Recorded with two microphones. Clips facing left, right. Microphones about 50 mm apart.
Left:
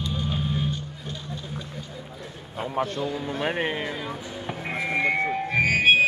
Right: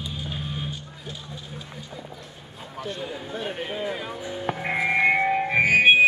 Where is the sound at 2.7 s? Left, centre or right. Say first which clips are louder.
Left 5 dB; left.